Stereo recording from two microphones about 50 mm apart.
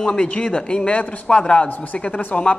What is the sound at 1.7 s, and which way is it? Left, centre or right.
Speech, left.